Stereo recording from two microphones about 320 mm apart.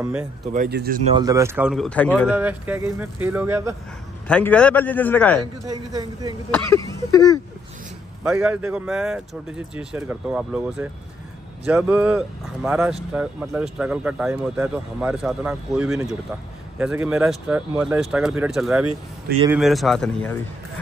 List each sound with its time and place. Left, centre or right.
0.0 s speech: centre
0.5 s speech: right
1.2 s speech: centre
4.3 s speech: centre
5.7 s a man's voice: centre
6.5 s speech: centre
8.2 s speech: centre